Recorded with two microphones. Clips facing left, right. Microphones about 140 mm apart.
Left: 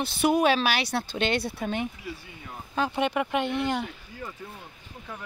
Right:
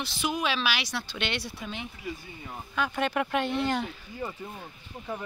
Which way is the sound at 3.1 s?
15° left (ahead or behind).